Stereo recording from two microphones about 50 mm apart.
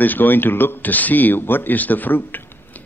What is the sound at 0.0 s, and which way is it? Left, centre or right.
A man's voice, left.